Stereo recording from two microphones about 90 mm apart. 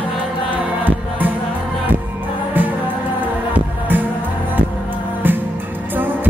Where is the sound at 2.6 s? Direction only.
20° right (ahead or behind).